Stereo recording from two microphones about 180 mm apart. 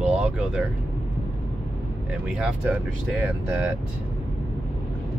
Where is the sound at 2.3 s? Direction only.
5° right (ahead or behind).